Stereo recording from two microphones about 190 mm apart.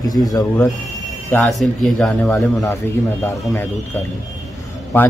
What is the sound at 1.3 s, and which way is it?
Speech, centre (ahead or behind).